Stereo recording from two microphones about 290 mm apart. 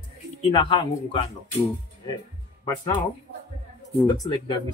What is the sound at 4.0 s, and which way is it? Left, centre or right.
Speech, centre.